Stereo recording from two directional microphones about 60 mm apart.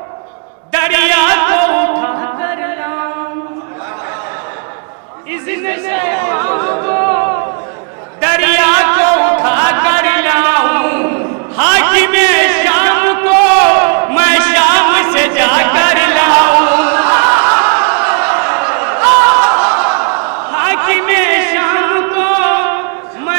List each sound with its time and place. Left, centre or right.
0.7 s music: right
5.3 s chatter: right
8.2 s a sound: right